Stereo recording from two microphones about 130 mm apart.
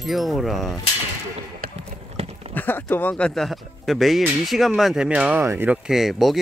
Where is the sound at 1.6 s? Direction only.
90° right.